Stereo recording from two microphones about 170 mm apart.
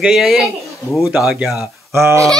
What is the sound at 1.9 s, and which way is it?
Speech, 15° right (ahead or behind).